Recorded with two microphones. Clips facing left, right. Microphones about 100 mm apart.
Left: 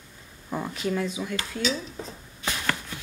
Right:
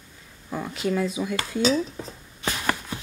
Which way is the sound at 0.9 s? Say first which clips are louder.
Right 3 dB; 5° right (ahead or behind).